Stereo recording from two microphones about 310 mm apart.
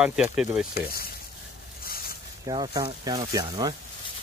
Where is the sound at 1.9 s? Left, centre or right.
Left.